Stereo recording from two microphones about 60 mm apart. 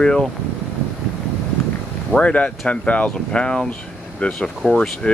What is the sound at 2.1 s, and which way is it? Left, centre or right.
Speech, left.